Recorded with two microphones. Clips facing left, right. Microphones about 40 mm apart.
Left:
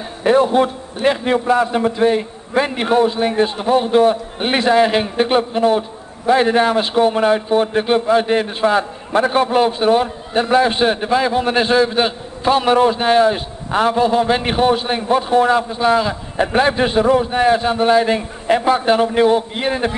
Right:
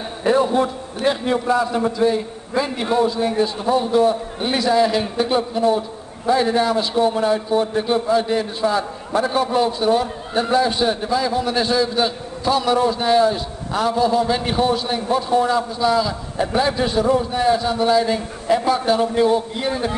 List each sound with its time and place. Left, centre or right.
0.2 s a man's voice: left